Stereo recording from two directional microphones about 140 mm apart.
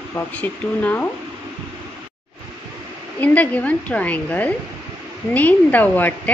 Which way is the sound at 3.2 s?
10° left (ahead or behind).